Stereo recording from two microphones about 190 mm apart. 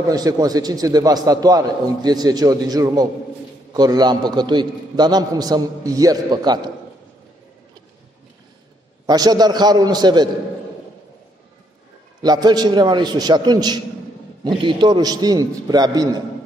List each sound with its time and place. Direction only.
0.1 s a man's voice: 20° right (ahead or behind)
9.0 s a man's voice: 20° right (ahead or behind)
12.2 s a man's voice: 20° right (ahead or behind)